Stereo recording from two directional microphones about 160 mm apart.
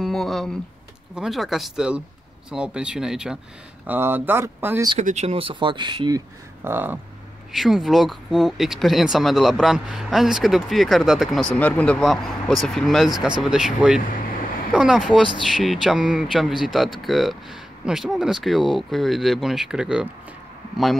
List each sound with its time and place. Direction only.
0.0 s a sound: centre (ahead or behind)
1.1 s speech: centre (ahead or behind)
4.9 s speech: 45° right (ahead or behind); by 7.0 s 15° right (ahead or behind)
7.5 s speech: centre (ahead or behind)